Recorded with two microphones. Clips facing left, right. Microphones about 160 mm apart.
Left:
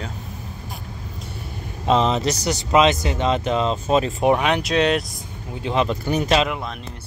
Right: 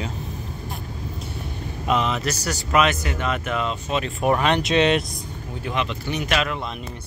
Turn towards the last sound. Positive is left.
turn(degrees=40)  # may be behind; listen again after turning